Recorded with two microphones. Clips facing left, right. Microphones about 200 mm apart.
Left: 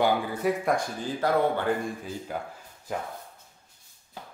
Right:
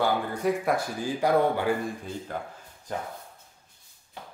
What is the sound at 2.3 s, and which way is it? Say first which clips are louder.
Speech: left 1 dB; 10° left (ahead or behind).